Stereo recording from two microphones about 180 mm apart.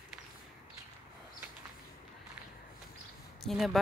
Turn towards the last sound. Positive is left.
turn(degrees=0)  # may be behind; listen again after turning